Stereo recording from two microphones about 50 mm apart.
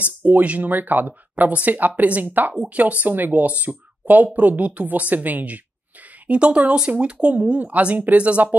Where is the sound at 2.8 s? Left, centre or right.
Right.